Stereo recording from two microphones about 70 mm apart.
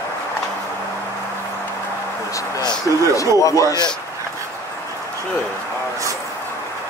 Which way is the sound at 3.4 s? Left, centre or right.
Left.